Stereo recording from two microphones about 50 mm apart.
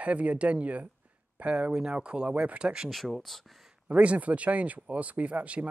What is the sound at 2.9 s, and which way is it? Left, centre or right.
Speech, centre.